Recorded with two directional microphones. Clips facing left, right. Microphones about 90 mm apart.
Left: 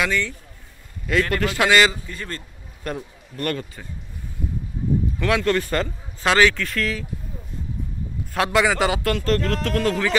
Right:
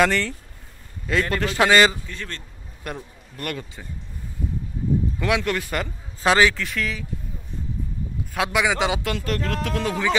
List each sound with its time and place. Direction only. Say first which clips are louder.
0.0 s speech: right 3 dB; 45° right (ahead or behind)
1.0 s a man's voice: left 2 dB; 25° right (ahead or behind)
2.0 s speech: left 2 dB; 5° left (ahead or behind)
2.8 s a man's voice: left 4 dB; 10° right (ahead or behind)
5.2 s speech: left 6 dB; 15° right (ahead or behind)
6.2 s a man's voice: even; 20° right (ahead or behind)
6.6 s speech: left 2 dB; 5° right (ahead or behind)
8.3 s speech: left 2 dB; 5° right (ahead or behind)
8.7 s speech: left 2 dB; 15° right (ahead or behind)